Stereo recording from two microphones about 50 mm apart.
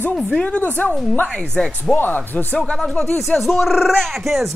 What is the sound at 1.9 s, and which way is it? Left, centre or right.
Speech, left.